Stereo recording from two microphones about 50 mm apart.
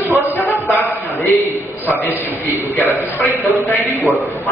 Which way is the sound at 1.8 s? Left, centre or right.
Left.